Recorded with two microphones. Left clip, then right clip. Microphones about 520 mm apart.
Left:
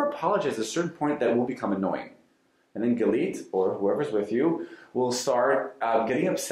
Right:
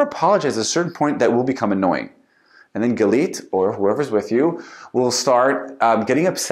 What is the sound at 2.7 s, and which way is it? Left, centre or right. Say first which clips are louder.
Speech: right 8 dB; right.